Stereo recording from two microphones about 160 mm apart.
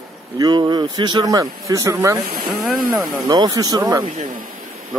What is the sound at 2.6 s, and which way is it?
Speech, centre (ahead or behind).